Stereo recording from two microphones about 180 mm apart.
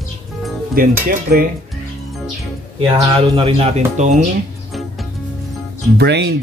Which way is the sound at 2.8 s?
30° right (ahead or behind).